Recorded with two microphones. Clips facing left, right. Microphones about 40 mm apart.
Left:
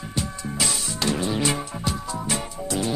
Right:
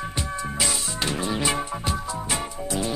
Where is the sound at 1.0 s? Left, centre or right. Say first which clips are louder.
Left 3 dB; right.